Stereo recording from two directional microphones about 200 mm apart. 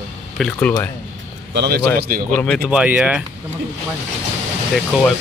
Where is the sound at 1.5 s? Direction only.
55° right (ahead or behind).